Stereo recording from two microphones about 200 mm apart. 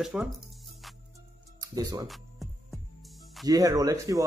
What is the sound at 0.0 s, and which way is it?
Speech, 5° right (ahead or behind).